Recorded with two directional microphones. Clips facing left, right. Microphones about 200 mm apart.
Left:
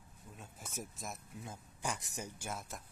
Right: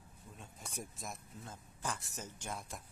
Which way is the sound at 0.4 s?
5° left (ahead or behind).